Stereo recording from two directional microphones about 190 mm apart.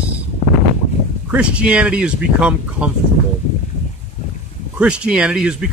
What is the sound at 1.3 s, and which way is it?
Speech, 5° right (ahead or behind).